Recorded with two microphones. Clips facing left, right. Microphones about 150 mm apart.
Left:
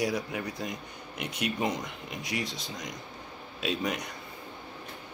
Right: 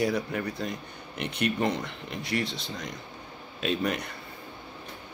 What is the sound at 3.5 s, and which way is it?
Speech, centre (ahead or behind).